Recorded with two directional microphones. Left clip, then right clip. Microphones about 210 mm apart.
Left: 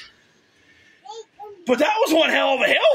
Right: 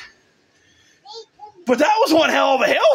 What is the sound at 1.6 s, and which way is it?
Speech, 20° right (ahead or behind).